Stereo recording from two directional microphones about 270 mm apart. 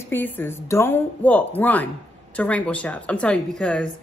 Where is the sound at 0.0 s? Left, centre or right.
Centre.